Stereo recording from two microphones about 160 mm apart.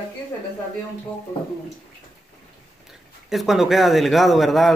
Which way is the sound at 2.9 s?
Centre (ahead or behind).